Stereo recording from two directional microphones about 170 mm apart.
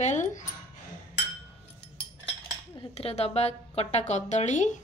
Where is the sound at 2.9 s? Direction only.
35° left (ahead or behind).